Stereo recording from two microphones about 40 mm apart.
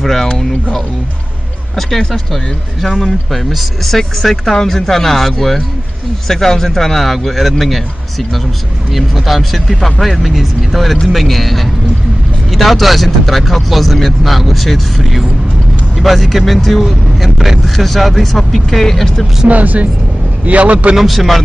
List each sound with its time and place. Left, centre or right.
0.0 s speech: centre
1.8 s speech: centre
19.4 s a man's voice: right
20.9 s speech: centre